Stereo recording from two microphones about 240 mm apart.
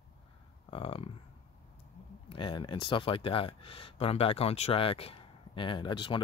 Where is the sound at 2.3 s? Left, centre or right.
Centre.